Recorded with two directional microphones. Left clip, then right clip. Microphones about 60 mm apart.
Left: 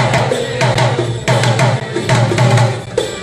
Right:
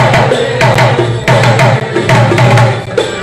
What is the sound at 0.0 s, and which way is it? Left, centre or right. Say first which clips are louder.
Music: right 6 dB; centre.